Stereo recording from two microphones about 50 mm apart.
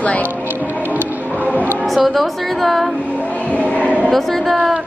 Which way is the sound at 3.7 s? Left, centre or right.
Left.